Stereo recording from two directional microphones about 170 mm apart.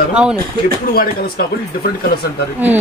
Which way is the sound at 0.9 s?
60° left (ahead or behind).